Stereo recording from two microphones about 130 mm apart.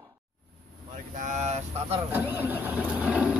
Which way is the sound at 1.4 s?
60° right (ahead or behind).